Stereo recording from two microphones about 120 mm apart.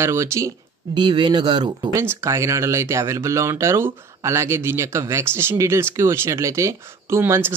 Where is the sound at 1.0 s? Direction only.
40° right (ahead or behind).